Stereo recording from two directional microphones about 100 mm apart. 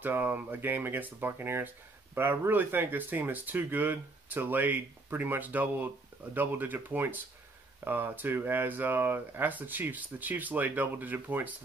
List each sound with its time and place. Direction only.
0.0 s speech: 20° right (ahead or behind)